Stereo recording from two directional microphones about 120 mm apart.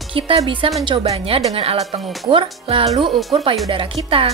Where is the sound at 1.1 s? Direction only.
60° right (ahead or behind).